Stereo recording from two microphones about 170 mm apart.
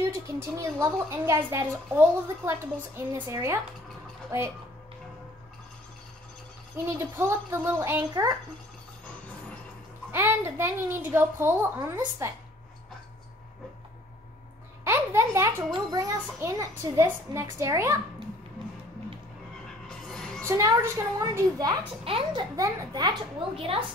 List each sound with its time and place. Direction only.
0.0 s a woman's voice: 15° right (ahead or behind)
6.8 s a woman's voice: 15° right (ahead or behind)
10.1 s a woman's voice: 15° right (ahead or behind)
14.9 s a child's voice: 15° right (ahead or behind)
19.9 s music: 5° left (ahead or behind)
20.4 s a child's voice: 20° right (ahead or behind)